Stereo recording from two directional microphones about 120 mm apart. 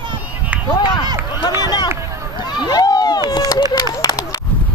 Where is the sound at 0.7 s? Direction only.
40° left (ahead or behind).